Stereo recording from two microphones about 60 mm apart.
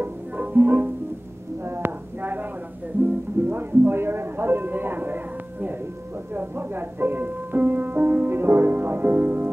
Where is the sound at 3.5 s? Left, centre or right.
Right.